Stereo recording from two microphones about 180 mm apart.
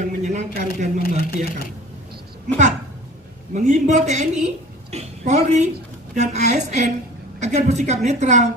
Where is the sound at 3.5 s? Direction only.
45° right (ahead or behind).